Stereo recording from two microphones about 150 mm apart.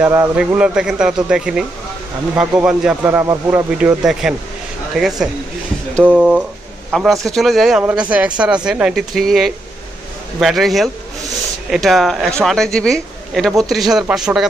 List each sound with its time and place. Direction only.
0.0 s speech: 15° right (ahead or behind)
0.6 s speech: 5° right (ahead or behind)
3.7 s a man's voice: 5° right (ahead or behind)